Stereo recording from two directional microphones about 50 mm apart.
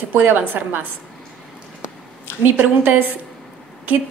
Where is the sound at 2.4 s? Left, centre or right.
Right.